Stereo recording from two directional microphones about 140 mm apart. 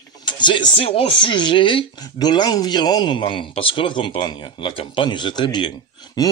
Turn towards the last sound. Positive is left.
turn(degrees=30)  # may be behind; listen again after turning